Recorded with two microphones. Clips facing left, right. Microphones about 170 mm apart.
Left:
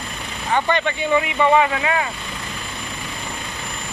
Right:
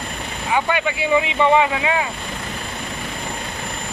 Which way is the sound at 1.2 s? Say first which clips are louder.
Left 1 dB; 20° right (ahead or behind).